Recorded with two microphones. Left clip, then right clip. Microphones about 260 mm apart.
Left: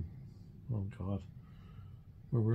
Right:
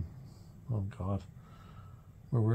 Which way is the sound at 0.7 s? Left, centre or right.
Right.